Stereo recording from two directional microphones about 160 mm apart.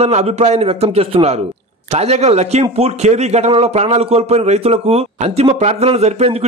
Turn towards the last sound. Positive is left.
turn(degrees=-40)  # may be behind; listen again after turning